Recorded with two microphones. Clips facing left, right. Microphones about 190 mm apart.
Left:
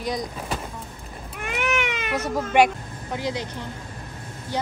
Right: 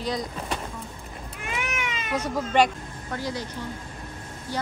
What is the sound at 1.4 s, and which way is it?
Cat, 65° left (ahead or behind).